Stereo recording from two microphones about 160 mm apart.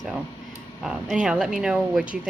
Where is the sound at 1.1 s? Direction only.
5° right (ahead or behind).